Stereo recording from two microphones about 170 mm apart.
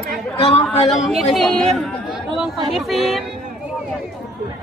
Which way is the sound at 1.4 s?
Centre (ahead or behind).